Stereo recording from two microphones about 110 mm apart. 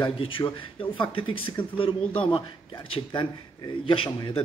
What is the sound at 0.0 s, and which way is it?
A man's voice, 55° left (ahead or behind).